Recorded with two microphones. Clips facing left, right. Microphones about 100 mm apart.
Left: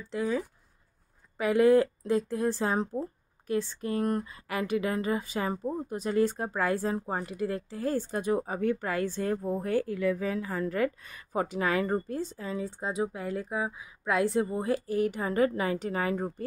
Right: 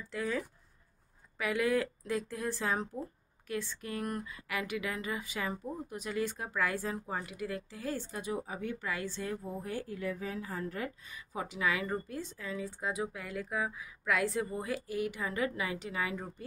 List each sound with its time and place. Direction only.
0.0 s speech: 25° left (ahead or behind)
1.4 s speech: 35° left (ahead or behind)